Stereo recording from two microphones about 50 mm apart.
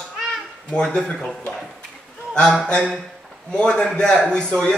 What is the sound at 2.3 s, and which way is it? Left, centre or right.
A man's voice, centre.